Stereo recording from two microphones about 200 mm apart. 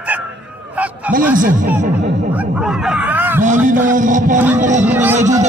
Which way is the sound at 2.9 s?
10° right (ahead or behind).